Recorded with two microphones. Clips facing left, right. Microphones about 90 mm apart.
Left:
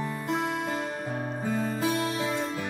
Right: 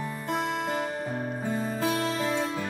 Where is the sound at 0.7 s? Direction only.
25° right (ahead or behind).